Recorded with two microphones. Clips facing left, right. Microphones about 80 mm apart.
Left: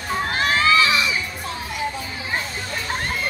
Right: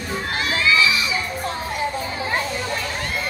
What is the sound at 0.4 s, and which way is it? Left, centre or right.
Children shouting, left.